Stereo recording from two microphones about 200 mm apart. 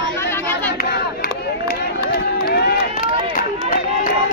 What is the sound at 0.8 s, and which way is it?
Crowd, 50° left (ahead or behind).